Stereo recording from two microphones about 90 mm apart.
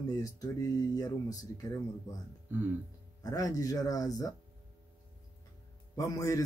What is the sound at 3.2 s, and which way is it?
A man's voice, 40° left (ahead or behind).